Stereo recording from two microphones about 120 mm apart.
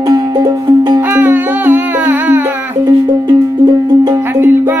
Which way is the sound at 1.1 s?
15° right (ahead or behind).